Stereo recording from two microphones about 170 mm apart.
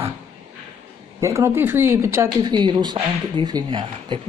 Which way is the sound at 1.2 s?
15° right (ahead or behind).